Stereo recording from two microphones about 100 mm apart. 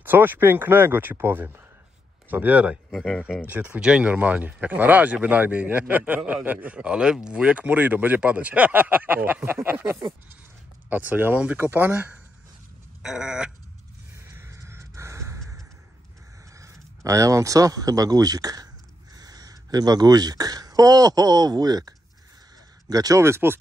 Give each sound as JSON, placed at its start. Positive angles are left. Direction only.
{"t": 0.0, "sound": "speech", "side_deg": -20}
{"t": 2.9, "sound": "speech", "side_deg": 5}
{"t": 3.4, "sound": "speech", "side_deg": -15}
{"t": 13.0, "sound": "speech", "side_deg": -5}
{"t": 14.1, "sound": "a sound", "side_deg": -25}
{"t": 16.5, "sound": "speech", "side_deg": -30}